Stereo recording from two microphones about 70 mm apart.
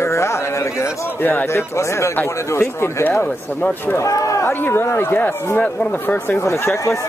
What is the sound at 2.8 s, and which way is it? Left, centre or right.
Speech, left.